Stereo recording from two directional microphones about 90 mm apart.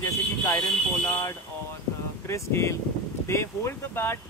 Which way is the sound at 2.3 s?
30° left (ahead or behind).